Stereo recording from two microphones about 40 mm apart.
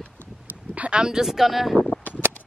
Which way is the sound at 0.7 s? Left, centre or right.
Right.